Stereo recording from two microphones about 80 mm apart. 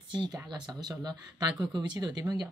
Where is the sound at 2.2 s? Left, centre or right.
Right.